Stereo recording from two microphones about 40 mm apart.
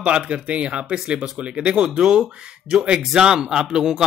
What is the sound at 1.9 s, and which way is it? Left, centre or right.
A man's voice, centre.